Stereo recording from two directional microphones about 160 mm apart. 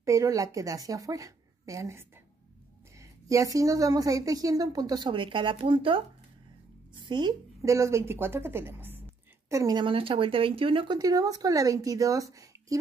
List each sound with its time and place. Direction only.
0.0 s a woman's voice: 20° right (ahead or behind)